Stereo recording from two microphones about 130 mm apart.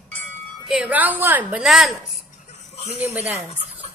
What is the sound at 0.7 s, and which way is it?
Speech, 10° right (ahead or behind).